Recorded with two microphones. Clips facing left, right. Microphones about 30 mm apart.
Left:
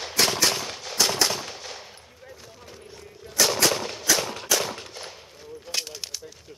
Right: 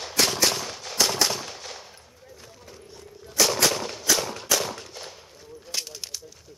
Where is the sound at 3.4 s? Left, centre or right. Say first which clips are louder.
Even; centre.